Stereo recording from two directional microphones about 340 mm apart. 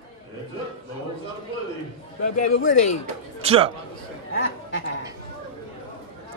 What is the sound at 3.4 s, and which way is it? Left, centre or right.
Speech, centre.